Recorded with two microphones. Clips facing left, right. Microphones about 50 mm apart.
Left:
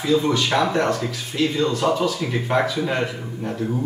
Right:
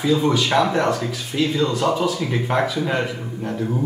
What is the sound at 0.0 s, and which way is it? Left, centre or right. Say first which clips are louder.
A man's voice: right 1 dB; centre.